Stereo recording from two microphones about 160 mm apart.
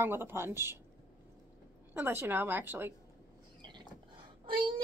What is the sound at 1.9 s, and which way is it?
A woman's voice, 15° right (ahead or behind).